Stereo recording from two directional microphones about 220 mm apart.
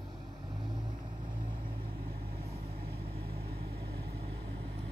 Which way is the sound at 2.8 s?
45° right (ahead or behind).